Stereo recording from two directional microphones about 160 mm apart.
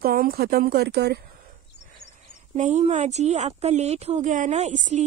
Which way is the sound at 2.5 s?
45° right (ahead or behind).